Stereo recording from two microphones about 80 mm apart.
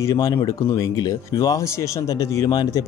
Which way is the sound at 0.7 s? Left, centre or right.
Left.